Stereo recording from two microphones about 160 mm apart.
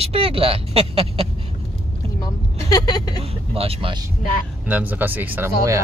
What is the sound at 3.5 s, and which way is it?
Speech, 35° right (ahead or behind).